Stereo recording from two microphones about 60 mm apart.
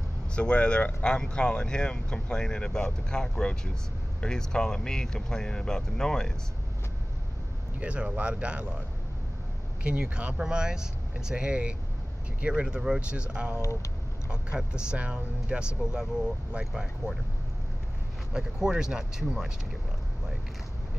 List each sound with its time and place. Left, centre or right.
0.3 s speech: centre
7.8 s speech: right
9.8 s speech: centre
12.6 s speech: centre
13.6 s speech: left
14.3 s speech: centre
18.3 s speech: centre